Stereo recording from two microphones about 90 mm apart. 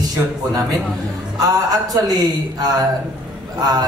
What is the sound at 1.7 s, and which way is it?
Speech, 45° right (ahead or behind).